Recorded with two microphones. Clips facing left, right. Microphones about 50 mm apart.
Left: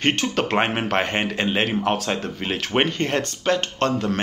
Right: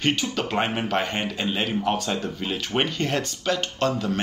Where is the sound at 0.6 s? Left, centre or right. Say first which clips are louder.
Left 2 dB; left.